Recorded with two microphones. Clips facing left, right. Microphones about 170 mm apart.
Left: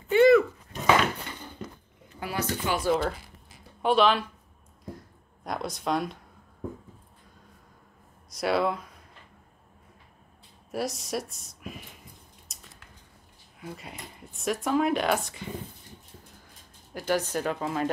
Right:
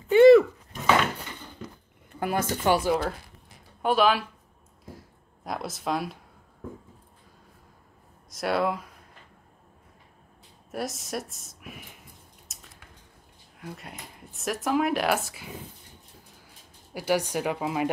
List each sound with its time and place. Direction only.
0.1 s dog: 20° right (ahead or behind)
2.1 s speech: 50° right (ahead or behind)
2.9 s speech: centre (ahead or behind)
4.9 s a sound: centre (ahead or behind)
8.3 s speech: centre (ahead or behind)
10.7 s speech: centre (ahead or behind)
12.5 s a sound: centre (ahead or behind)
13.6 s speech: centre (ahead or behind)
16.9 s speech: 10° right (ahead or behind)